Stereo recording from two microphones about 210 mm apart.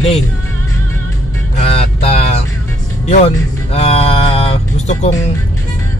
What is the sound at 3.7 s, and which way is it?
Music, 30° left (ahead or behind).